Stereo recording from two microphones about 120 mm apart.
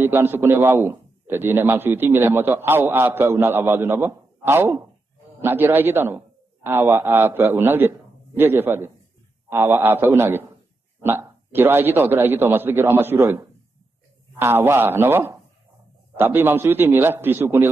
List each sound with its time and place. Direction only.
0.0 s a man's voice: 20° right (ahead or behind)